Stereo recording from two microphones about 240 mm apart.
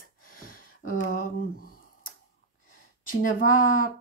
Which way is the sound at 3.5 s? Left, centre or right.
Left.